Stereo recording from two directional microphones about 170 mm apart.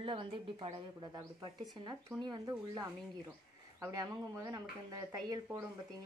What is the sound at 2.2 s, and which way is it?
Speech, 20° right (ahead or behind).